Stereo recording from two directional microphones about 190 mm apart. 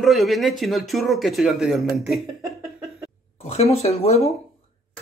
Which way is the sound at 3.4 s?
35° left (ahead or behind).